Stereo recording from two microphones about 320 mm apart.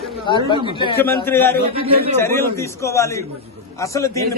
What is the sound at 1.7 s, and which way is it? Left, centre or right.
Speech, centre.